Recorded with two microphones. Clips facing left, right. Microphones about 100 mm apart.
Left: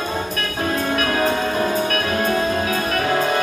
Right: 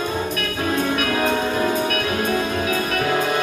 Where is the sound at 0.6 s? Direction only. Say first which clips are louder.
Left 1 dB; 40° left (ahead or behind).